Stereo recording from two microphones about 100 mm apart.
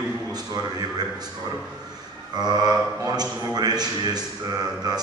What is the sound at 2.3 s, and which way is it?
A man's voice, 45° right (ahead or behind).